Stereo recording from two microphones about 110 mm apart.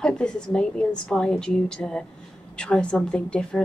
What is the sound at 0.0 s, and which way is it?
A woman's voice, 5° left (ahead or behind).